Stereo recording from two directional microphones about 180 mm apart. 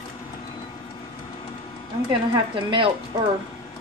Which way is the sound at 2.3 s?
30° right (ahead or behind).